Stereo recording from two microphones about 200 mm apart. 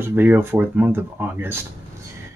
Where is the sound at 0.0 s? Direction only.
10° right (ahead or behind).